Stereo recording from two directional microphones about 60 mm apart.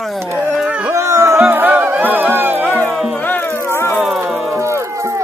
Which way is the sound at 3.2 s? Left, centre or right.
Left.